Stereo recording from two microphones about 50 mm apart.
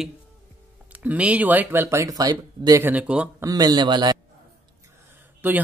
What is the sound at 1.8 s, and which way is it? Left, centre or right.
Speech, right.